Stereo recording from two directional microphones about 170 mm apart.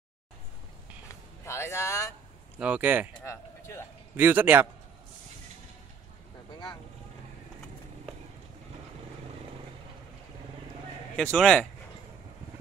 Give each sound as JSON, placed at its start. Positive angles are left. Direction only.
{"t": 1.4, "sound": "speech", "side_deg": 15}
{"t": 2.6, "sound": "speech", "side_deg": -10}
{"t": 3.3, "sound": "speech", "side_deg": 15}
{"t": 4.2, "sound": "speech", "side_deg": -10}
{"t": 11.3, "sound": "speech", "side_deg": 5}